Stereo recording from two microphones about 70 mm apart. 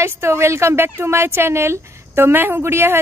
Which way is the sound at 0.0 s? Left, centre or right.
Right.